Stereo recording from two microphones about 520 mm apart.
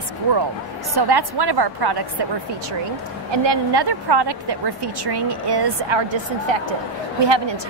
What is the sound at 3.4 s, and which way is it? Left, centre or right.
A woman's voice, right.